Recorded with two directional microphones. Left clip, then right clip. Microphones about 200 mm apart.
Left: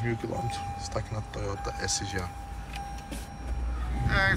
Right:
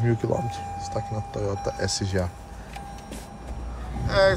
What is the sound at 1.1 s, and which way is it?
Speech, 30° right (ahead or behind).